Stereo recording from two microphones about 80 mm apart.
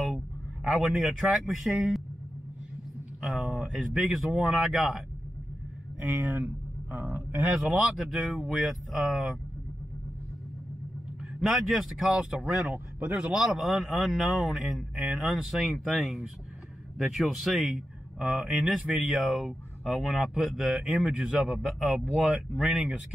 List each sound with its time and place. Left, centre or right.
0.7 s a man's voice: centre
3.2 s a man's voice: centre
5.9 s speech: centre
7.7 s a man's voice: centre
11.3 s a man's voice: centre